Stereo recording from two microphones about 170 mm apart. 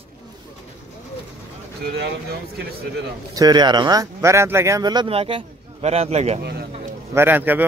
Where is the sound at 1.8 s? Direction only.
70° right (ahead or behind).